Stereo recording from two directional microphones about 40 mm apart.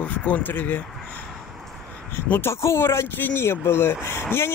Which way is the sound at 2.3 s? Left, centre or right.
Left.